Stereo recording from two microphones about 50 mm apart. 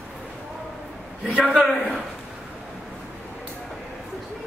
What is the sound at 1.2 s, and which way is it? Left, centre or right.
Speech, right.